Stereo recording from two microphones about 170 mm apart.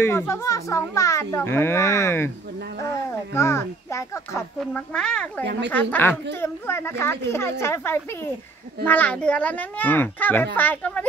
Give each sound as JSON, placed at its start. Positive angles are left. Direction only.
{"t": 0.0, "sound": "a child's voice", "side_deg": 15}
{"t": 4.6, "sound": "speech", "side_deg": 5}
{"t": 5.4, "sound": "speech", "side_deg": -80}
{"t": 5.7, "sound": "a child's voice", "side_deg": 10}